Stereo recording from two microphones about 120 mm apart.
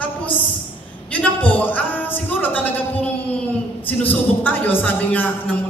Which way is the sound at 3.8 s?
15° left (ahead or behind).